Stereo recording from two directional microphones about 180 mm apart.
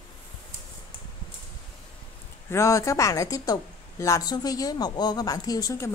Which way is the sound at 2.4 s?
15° left (ahead or behind).